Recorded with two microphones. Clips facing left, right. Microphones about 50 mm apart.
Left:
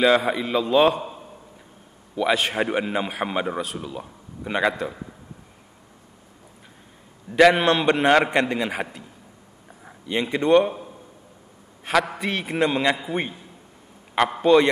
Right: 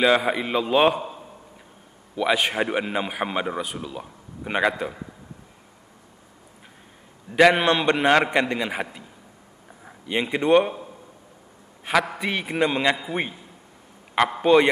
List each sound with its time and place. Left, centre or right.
0.0 s a man's voice: centre
0.4 s a man's voice: right
2.1 s a man's voice: centre
7.2 s a man's voice: centre
10.3 s a man's voice: centre
11.8 s a man's voice: centre
14.4 s a man's voice: centre